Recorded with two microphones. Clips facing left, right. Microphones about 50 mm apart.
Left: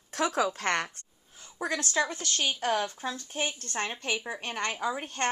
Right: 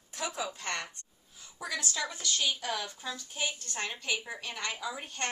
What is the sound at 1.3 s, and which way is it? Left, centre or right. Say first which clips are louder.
A woman's voice: left 5 dB; left.